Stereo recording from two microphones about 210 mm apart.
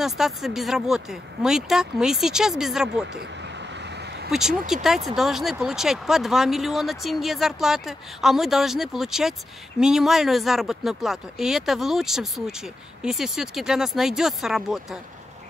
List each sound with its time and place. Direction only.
0.0 s speech: centre (ahead or behind)
3.2 s a sound: 55° right (ahead or behind)
4.3 s speech: centre (ahead or behind)